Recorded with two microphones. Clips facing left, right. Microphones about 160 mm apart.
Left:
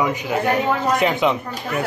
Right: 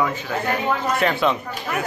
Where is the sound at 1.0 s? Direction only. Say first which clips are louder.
Even; 15° left (ahead or behind).